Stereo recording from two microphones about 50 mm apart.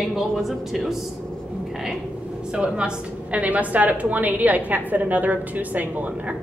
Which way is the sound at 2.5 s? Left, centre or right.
Centre.